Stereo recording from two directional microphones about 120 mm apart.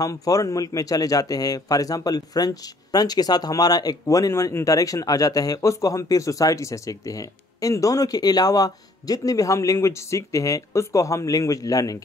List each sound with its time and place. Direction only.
0.0 s speech: 30° left (ahead or behind)